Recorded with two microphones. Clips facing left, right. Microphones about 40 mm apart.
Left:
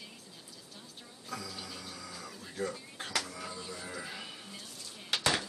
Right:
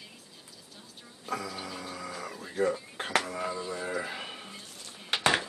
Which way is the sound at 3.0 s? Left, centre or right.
Right.